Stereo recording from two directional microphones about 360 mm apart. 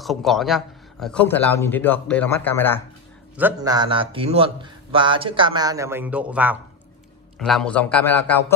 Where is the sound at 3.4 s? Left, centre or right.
Centre.